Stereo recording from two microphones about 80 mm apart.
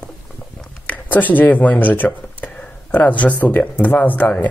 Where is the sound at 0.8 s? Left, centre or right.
Left.